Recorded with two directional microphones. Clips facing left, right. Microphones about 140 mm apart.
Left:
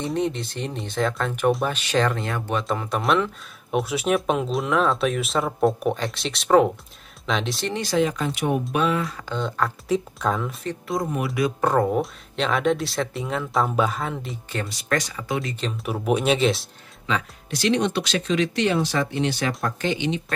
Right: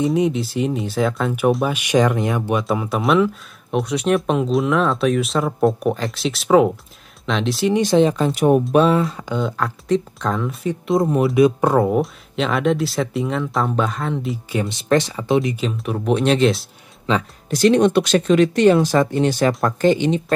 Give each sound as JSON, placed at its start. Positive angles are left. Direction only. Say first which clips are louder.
{"t": 0.0, "sound": "speech", "louder": "right 7 dB", "side_deg": -5}
{"t": 7.7, "sound": "speech", "louder": "right 7 dB", "side_deg": -20}
{"t": 9.3, "sound": "speech", "louder": "right 3 dB", "side_deg": -5}
{"t": 10.9, "sound": "speech", "louder": "right 9 dB", "side_deg": -25}
{"t": 11.7, "sound": "speech", "louder": "right 4 dB", "side_deg": -5}
{"t": 14.5, "sound": "speech", "louder": "right 7 dB", "side_deg": -20}
{"t": 15.6, "sound": "speech", "louder": "right 4 dB", "side_deg": 5}
{"t": 17.0, "sound": "speech", "louder": "right 6 dB", "side_deg": -40}